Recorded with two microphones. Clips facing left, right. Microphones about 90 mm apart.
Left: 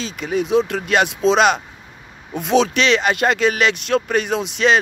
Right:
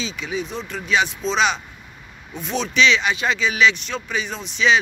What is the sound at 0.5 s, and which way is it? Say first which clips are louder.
Speech: left 10 dB; 80° left.